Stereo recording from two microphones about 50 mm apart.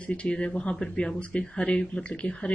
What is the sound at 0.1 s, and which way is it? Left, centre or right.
Speech, left.